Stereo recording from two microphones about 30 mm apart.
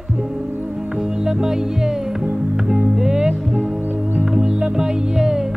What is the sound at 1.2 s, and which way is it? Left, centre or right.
Music, right.